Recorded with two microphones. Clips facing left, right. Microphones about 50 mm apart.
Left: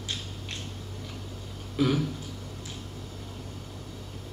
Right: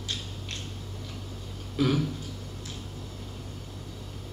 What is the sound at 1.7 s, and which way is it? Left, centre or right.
Speech, centre.